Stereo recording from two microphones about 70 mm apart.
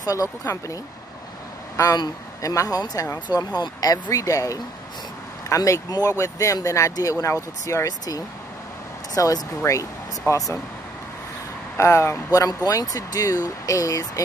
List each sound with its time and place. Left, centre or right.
0.0 s speech: left
2.4 s speech: left
3.3 s speech: left
5.9 s speech: left
6.1 s speech: left
11.7 s speech: left
12.3 s speech: left